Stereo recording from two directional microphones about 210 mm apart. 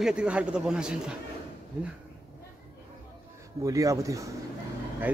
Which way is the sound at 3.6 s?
15° right (ahead or behind).